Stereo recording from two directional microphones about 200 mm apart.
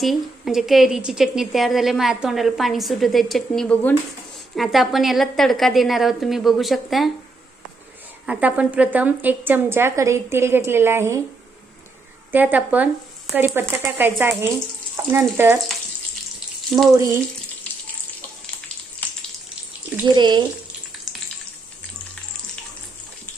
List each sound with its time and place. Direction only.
0.0 s a woman's voice: centre (ahead or behind)
8.3 s a woman's voice: 5° right (ahead or behind)
12.3 s a woman's voice: 10° right (ahead or behind)
16.6 s speech: centre (ahead or behind)
16.9 s a woman's voice: 15° right (ahead or behind)
20.2 s speech: 20° right (ahead or behind)